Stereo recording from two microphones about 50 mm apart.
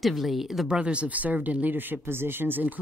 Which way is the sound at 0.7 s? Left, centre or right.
Right.